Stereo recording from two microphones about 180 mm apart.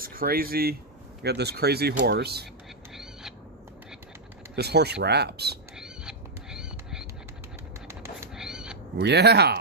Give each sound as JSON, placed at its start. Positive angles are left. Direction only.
{"t": 0.0, "sound": "speech", "side_deg": -55}
{"t": 2.9, "sound": "owl", "side_deg": 0}
{"t": 4.6, "sound": "speech", "side_deg": -65}
{"t": 5.8, "sound": "a sound", "side_deg": -5}
{"t": 8.4, "sound": "owl", "side_deg": -5}
{"t": 8.9, "sound": "speech", "side_deg": -65}